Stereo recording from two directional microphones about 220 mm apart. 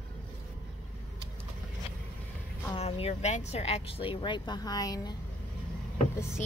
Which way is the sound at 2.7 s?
25° left (ahead or behind).